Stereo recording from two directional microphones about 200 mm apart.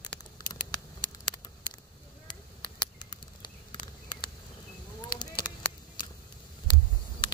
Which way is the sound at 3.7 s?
20° left (ahead or behind).